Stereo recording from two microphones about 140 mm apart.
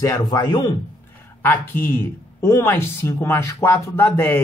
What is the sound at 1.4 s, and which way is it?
Speech, 15° left (ahead or behind).